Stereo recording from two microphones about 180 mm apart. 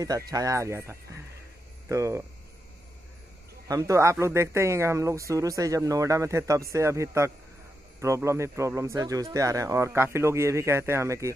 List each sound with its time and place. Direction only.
0.3 s a man's voice: 20° right (ahead or behind)
3.6 s a man's voice: 20° right (ahead or behind)